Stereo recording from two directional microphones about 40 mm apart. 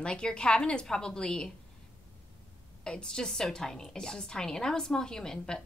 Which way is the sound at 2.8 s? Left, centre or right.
Left.